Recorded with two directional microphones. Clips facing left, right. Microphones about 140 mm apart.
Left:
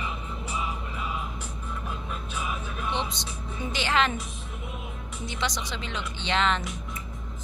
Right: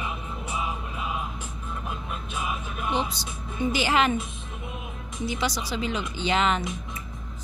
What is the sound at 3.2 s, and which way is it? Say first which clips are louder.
Speech: right 5 dB; 5° right (ahead or behind).